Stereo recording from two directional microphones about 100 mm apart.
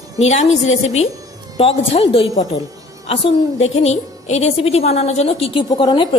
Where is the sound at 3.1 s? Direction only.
85° left; by 5.7 s 70° left (ahead or behind).